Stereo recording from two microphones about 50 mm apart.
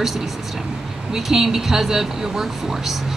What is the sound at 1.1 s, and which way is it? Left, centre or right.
A woman's voice, centre.